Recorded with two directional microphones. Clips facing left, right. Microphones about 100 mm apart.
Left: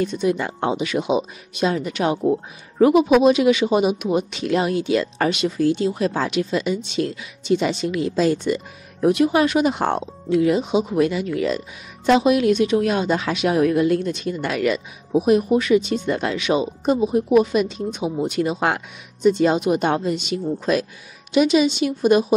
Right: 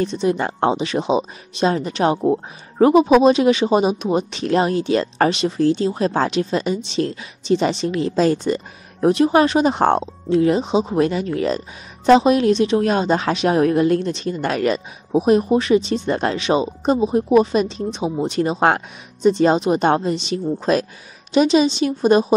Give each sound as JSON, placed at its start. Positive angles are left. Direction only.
{"t": 0.0, "sound": "a woman's voice", "side_deg": -30}